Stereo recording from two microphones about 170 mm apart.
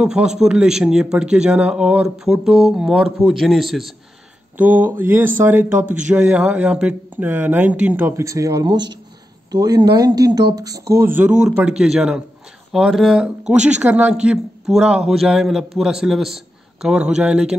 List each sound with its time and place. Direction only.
0.0 s speech: 5° right (ahead or behind)